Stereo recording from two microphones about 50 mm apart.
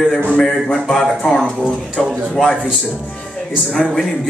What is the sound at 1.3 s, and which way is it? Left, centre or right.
A man's voice, centre.